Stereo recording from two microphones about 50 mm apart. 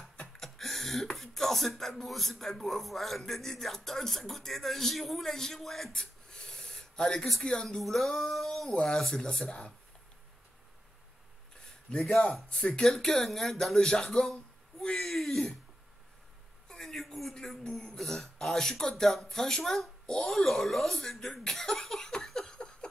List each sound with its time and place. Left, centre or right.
0.4 s a sound: centre
1.1 s beatboxing: centre
1.8 s speech: centre
6.3 s gasp: centre
7.4 s speech: centre
8.6 s speech: centre
11.9 s speech: centre
16.6 s a man's voice: centre